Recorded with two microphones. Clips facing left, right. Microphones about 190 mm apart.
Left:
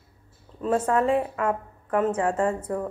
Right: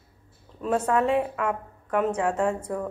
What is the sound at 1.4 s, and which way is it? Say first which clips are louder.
Speech: left 2 dB; 5° left (ahead or behind).